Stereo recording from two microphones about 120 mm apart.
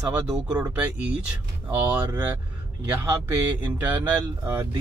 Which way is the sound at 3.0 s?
20° right (ahead or behind).